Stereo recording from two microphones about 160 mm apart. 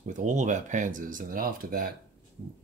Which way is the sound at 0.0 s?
50° right (ahead or behind).